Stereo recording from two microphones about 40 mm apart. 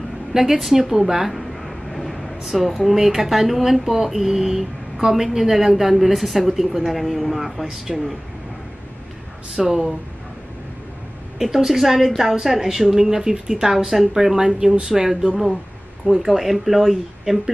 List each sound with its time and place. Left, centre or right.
0.3 s a woman's voice: centre
9.7 s a woman's voice: centre
11.3 s a woman's voice: centre